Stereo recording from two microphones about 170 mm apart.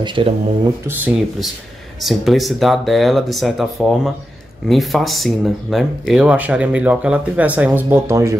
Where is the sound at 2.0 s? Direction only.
Centre (ahead or behind).